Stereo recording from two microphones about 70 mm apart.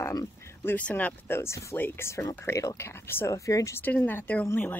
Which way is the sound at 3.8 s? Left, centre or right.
Left.